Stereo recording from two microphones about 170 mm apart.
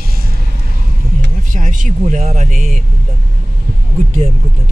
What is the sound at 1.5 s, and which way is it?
Music, 50° right (ahead or behind).